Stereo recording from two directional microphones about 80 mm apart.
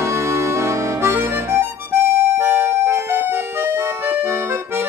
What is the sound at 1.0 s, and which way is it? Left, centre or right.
Music, right.